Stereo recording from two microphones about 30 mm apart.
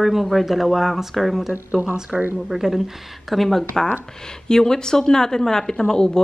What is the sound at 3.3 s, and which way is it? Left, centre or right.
Speech, centre.